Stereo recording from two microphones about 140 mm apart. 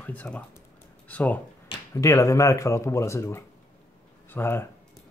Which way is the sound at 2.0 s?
20° left (ahead or behind).